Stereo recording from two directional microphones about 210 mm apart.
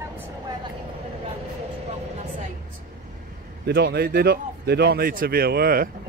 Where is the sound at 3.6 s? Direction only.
50° right (ahead or behind).